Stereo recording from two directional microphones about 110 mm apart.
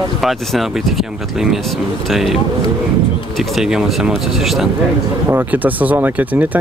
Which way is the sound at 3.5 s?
5° right (ahead or behind).